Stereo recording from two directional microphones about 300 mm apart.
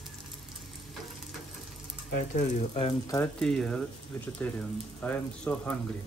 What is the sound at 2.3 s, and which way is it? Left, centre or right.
Speech, left.